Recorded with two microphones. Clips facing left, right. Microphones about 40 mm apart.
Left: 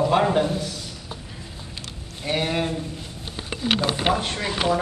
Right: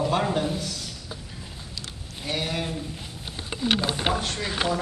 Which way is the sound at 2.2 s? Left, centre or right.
Centre.